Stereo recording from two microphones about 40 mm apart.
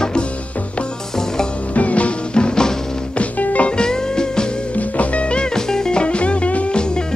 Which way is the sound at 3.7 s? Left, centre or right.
Centre.